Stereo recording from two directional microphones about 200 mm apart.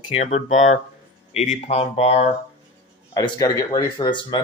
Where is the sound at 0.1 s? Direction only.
35° left (ahead or behind).